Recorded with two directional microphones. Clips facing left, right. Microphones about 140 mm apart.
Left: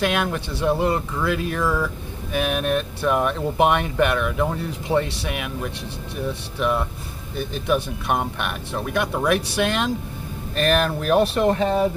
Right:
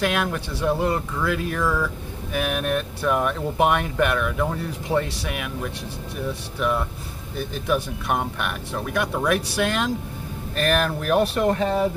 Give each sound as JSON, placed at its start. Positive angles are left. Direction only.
{"t": 0.0, "sound": "speech", "side_deg": 25}